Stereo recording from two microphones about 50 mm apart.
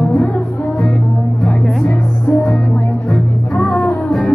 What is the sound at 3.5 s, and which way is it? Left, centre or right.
Music, left.